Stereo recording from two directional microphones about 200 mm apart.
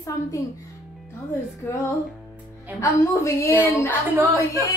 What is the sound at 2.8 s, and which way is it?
A woman's voice, 15° left (ahead or behind).